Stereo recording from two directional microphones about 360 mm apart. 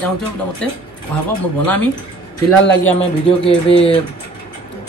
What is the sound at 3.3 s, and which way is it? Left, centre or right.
Speech, centre.